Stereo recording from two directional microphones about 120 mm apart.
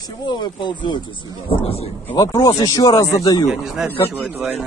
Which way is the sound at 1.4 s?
55° left (ahead or behind).